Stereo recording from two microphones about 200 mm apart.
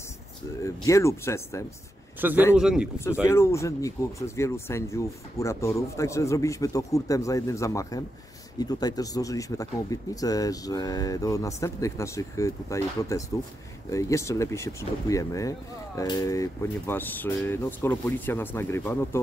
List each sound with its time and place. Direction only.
0.8 s speech: 15° left (ahead or behind)
2.1 s speech: 10° right (ahead or behind)
3.3 s speech: 15° left (ahead or behind)